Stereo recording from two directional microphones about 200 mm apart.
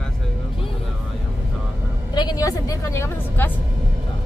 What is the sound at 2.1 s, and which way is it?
A woman's voice, 20° left (ahead or behind).